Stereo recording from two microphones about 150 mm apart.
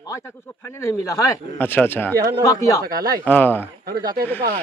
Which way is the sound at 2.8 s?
75° right (ahead or behind).